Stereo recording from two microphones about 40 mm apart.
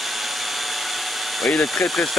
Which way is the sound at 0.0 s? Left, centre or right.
Centre.